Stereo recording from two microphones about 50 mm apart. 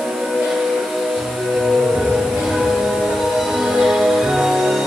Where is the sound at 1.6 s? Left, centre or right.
Centre.